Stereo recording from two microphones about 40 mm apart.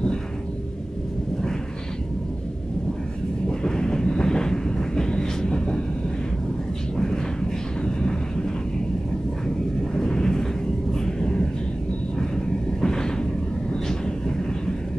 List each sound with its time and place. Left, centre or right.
3.4 s train: centre
7.8 s vehicle: centre
9.9 s a sound: centre
10.9 s vehicle: centre
12.8 s a sound: centre
13.8 s vehicle: centre